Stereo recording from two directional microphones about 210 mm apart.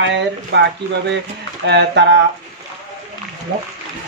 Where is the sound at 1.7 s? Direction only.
55° right (ahead or behind).